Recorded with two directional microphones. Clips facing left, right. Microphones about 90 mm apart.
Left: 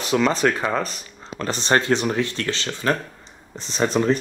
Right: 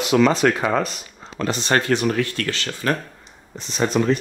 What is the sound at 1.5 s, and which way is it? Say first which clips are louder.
Speech: even; 30° left (ahead or behind).